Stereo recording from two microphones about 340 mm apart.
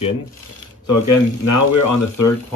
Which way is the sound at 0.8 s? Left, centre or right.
Left.